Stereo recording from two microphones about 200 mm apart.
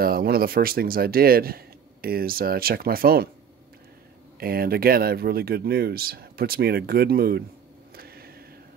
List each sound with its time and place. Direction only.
0.0 s speech: 50° right (ahead or behind)
4.4 s speech: 50° right (ahead or behind)
7.9 s a sound: 50° right (ahead or behind)